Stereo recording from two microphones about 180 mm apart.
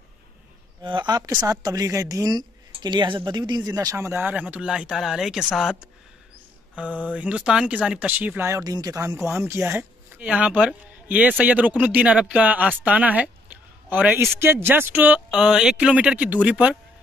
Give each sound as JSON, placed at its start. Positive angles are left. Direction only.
{"t": 0.8, "sound": "a woman's voice", "side_deg": -25}